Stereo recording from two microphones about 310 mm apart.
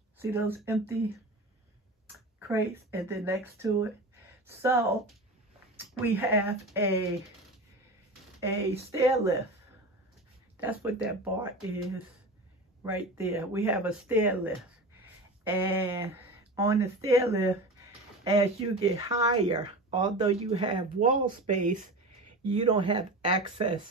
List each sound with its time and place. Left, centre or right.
0.2 s speech: centre
2.3 s speech: centre
6.1 s speech: centre
8.4 s speech: centre
10.6 s speech: centre
22.5 s speech: centre